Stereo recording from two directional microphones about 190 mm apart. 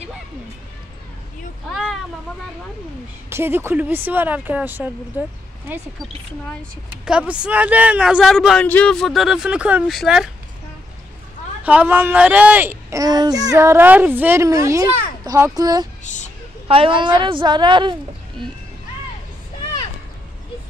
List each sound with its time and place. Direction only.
1.7 s a sound: centre (ahead or behind)
3.3 s speech: 10° right (ahead or behind)
7.1 s speech: 5° right (ahead or behind)
11.6 s a woman's voice: 10° right (ahead or behind)
16.0 s a sound: 40° left (ahead or behind)
16.6 s a woman's voice: 30° right (ahead or behind)